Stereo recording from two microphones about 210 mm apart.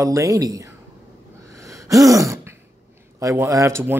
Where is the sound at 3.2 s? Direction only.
15° right (ahead or behind).